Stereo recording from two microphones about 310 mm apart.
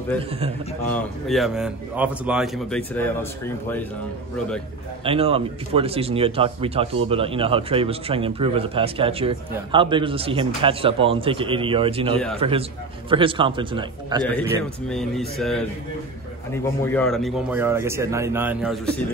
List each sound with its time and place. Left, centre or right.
0.8 s speech: centre
5.0 s a man's voice: centre
14.9 s speech: centre
16.8 s speech: centre